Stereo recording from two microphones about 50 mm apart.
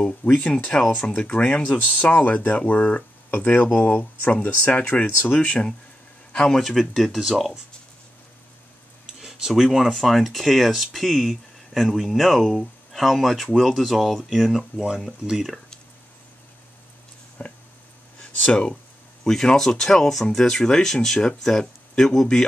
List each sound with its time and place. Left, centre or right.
0.2 s speech: left
4.3 s speech: left
6.6 s speech: centre
9.0 s speech: centre
17.4 s a sound: left
18.4 s speech: left
19.2 s speech: centre